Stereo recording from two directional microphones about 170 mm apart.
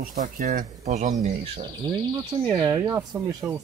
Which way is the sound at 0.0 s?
55° right (ahead or behind).